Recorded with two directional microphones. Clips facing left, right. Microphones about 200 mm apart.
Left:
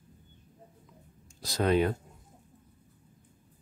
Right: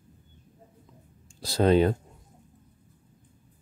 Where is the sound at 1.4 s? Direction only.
30° right (ahead or behind).